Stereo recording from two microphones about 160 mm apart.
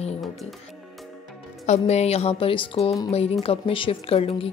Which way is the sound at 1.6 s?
45° left (ahead or behind).